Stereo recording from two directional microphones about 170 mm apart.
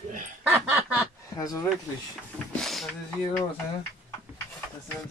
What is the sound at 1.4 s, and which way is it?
Speech, 20° left (ahead or behind).